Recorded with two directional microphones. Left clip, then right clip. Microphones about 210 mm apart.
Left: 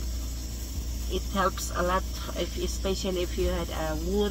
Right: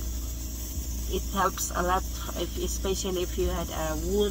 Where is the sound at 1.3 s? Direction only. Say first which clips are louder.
Right 1 dB; 15° right (ahead or behind).